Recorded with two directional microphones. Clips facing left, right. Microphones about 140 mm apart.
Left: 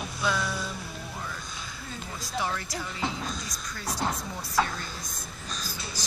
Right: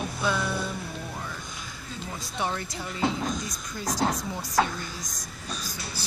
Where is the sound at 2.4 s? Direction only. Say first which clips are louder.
Right 1 dB; 20° right (ahead or behind).